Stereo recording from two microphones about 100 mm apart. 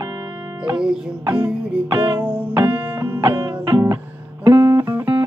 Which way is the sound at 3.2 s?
50° right (ahead or behind).